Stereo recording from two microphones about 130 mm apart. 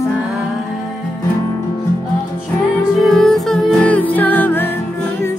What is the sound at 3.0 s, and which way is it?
Music, centre (ahead or behind).